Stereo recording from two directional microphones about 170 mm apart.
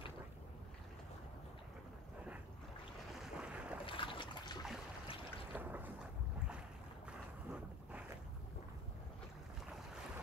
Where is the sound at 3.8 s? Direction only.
30° left (ahead or behind).